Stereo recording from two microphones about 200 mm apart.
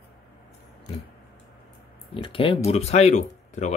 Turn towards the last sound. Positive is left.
turn(degrees=35)  # may be behind; listen again after turning